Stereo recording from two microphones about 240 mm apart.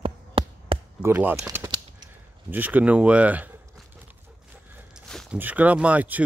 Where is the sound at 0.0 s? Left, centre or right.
Right.